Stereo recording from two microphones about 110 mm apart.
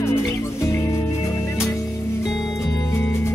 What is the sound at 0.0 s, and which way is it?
Music, 25° left (ahead or behind).